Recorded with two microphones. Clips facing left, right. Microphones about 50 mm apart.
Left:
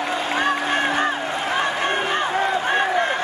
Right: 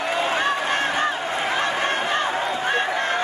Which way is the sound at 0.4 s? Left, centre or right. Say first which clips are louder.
Left 1 dB; left.